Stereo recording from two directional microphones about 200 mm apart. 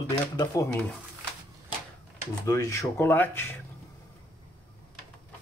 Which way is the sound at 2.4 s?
15° left (ahead or behind).